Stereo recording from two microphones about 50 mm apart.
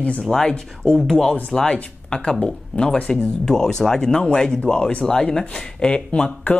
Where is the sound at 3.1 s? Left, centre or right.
Centre.